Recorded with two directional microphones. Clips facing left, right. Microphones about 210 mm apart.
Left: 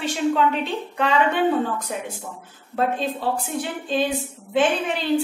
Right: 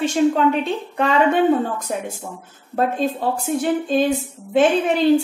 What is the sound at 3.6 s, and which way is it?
Speech, 45° right (ahead or behind).